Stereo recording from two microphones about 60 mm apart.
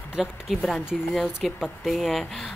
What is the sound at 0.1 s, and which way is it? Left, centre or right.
Speech, centre.